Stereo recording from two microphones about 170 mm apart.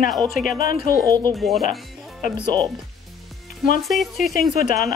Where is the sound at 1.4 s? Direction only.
Centre (ahead or behind).